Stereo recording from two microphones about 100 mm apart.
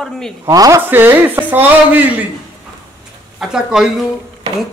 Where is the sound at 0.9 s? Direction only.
20° right (ahead or behind).